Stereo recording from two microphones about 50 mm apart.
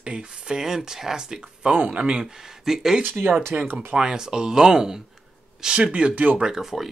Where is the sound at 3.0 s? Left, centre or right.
Right.